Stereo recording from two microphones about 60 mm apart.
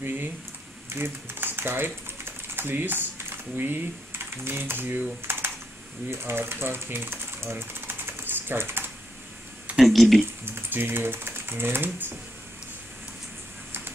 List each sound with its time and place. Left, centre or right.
0.0 s speech: right
9.8 s a sound: centre
10.4 s speech: right